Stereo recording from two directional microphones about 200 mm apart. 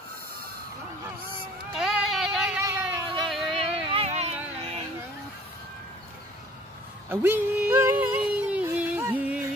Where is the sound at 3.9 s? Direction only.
30° right (ahead or behind).